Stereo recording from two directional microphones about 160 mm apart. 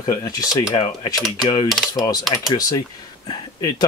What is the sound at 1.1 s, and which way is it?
Speech, centre (ahead or behind).